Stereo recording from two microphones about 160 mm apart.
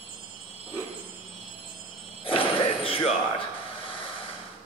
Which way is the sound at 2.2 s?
35° left (ahead or behind).